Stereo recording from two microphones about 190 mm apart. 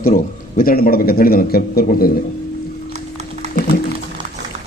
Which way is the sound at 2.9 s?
35° right (ahead or behind).